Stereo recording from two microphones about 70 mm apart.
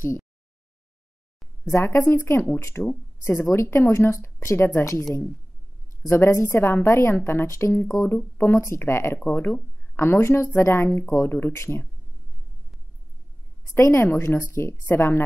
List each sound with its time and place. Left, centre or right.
1.7 s speech: left
2.8 s speech: centre
3.3 s speech: left
6.0 s speech: left
13.7 s speech: left